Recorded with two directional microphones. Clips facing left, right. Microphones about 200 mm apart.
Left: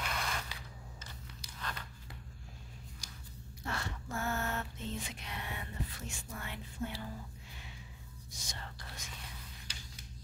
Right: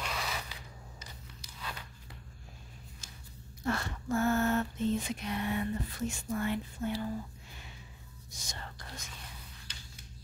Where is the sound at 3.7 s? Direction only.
45° right (ahead or behind).